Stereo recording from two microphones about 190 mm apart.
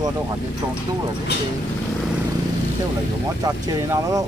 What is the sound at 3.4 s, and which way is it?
Speech, 20° right (ahead or behind).